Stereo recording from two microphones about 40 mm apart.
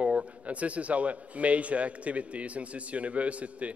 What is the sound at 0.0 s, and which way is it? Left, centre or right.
A man's voice, right.